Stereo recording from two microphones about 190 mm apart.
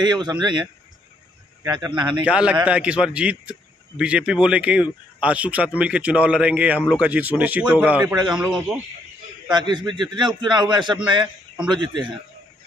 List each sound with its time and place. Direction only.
0.0 s a man's voice: 25° right (ahead or behind)
2.2 s a man's voice: 5° right (ahead or behind)
9.5 s a man's voice: 25° right (ahead or behind)